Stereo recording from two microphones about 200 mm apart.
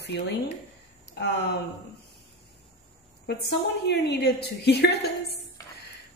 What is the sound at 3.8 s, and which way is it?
Speech, 55° left (ahead or behind).